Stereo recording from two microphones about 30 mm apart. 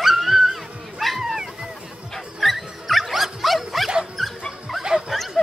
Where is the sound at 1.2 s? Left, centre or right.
Centre.